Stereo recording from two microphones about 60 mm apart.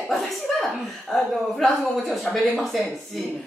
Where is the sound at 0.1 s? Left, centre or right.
Centre.